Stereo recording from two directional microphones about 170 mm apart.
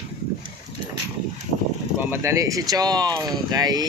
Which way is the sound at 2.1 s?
15° right (ahead or behind).